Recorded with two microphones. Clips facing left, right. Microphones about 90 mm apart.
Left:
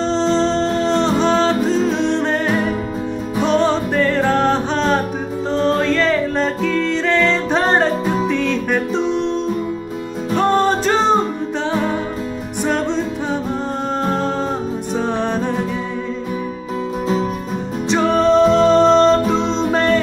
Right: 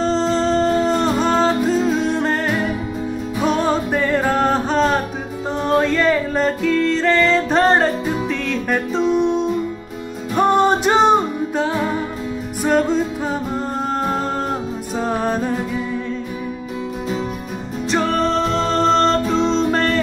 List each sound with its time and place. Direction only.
0.0 s music: 5° right (ahead or behind)
11.6 s music: 5° right (ahead or behind)
17.9 s music: centre (ahead or behind)